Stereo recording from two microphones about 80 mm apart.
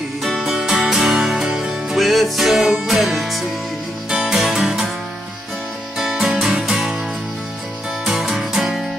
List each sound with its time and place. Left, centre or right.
0.2 s music: centre
5.9 s music: centre
8.0 s music: centre